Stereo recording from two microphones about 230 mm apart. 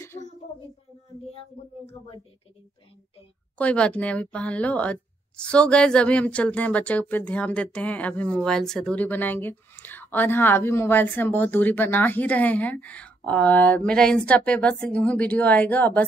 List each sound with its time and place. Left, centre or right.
1.4 s speech: left
3.5 s a woman's voice: centre